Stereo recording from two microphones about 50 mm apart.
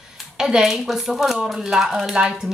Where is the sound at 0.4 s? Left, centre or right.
Centre.